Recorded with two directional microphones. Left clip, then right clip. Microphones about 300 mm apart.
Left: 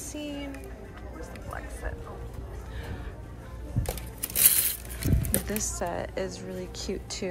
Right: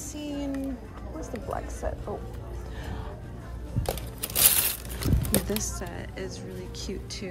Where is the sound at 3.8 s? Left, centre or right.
Right.